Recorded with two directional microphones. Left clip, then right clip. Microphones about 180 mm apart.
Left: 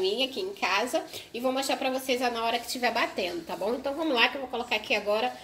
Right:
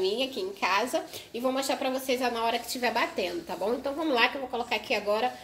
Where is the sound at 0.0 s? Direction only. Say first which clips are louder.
Left 1 dB; centre (ahead or behind).